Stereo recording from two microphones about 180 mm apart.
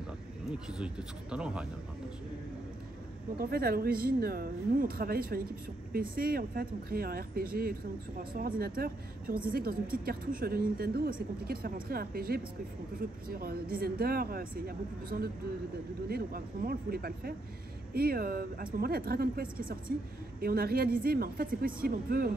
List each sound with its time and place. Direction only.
0.5 s speech: 5° right (ahead or behind)
3.3 s a woman's voice: 55° right (ahead or behind)